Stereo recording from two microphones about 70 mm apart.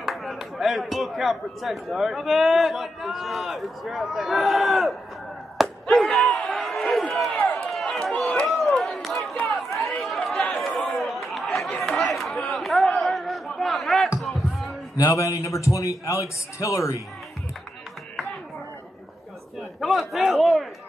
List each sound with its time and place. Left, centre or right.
0.0 s speech: centre
5.6 s a sound: centre
6.1 s battle cry: centre
6.5 s crowd: centre
7.7 s run: centre
8.5 s a sound: centre
10.0 s chatter: centre
10.7 s chatter: left
11.0 s chatter: centre
11.8 s a sound: centre
15.0 s a man's voice: left
19.8 s a sound: centre